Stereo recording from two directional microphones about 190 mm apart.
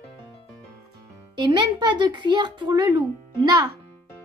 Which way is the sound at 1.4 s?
25° right (ahead or behind).